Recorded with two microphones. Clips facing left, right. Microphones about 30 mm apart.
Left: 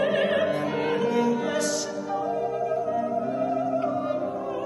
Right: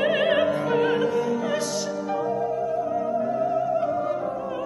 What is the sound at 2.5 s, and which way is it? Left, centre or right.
Music, centre.